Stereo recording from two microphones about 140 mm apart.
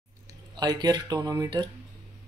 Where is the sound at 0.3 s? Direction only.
30° right (ahead or behind).